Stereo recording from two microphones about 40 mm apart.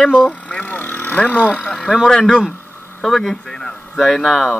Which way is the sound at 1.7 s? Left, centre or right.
Centre.